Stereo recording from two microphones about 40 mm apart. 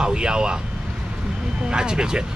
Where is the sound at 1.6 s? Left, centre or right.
Centre.